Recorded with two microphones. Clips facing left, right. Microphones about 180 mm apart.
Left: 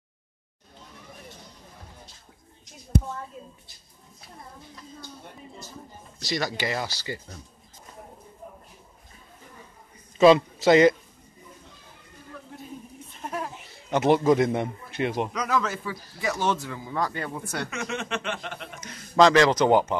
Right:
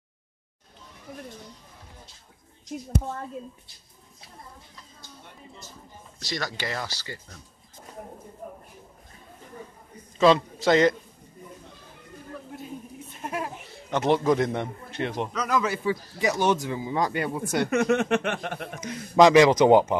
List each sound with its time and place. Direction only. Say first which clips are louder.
6.1 s a man's voice: left 4 dB; 10° left (ahead or behind)
10.1 s a man's voice: left 3 dB; 10° left (ahead or behind)
13.2 s chuckle: right 1 dB; 5° right (ahead or behind)
13.8 s a man's voice: left 2 dB; 5° left (ahead or behind)
15.6 s speech: right 5 dB; 15° right (ahead or behind)
17.6 s speech: right 10 dB; 55° right (ahead or behind)
18.8 s speech: right 2 dB; 15° right (ahead or behind)